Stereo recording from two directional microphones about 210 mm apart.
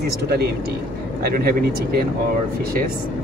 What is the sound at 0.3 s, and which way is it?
Speech, 50° right (ahead or behind).